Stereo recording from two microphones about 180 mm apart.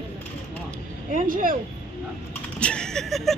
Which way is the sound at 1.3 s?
50° right (ahead or behind).